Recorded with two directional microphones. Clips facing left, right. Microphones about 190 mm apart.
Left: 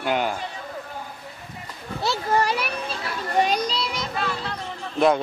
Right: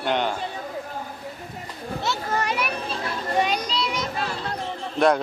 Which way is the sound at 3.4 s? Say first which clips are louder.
Left 1 dB; 35° left (ahead or behind).